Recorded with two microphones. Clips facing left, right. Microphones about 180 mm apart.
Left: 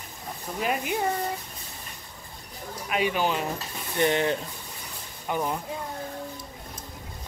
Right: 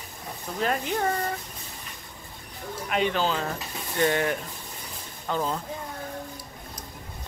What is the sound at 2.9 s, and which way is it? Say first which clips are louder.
Speech: even; 10° left (ahead or behind).